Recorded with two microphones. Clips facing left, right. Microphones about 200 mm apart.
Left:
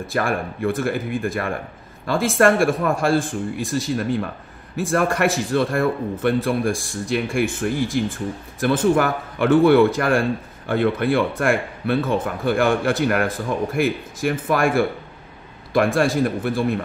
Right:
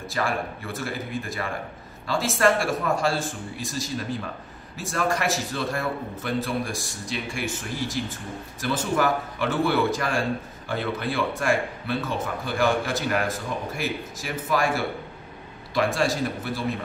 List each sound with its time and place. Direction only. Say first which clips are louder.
0.1 s a man's voice: left 4 dB; 55° left (ahead or behind)